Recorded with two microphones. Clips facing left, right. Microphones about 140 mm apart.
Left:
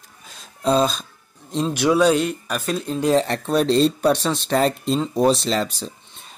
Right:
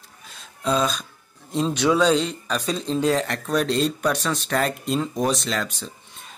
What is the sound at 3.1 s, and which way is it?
Speech, 30° left (ahead or behind).